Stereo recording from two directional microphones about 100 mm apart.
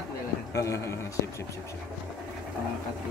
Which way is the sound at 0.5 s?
30° left (ahead or behind).